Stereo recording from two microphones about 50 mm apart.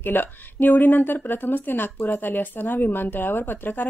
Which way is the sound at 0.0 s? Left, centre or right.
Left.